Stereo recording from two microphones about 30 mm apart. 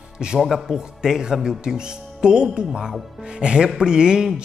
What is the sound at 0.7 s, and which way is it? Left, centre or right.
Speech, centre.